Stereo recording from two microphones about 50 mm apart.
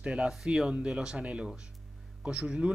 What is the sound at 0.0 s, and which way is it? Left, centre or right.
A man's voice, right.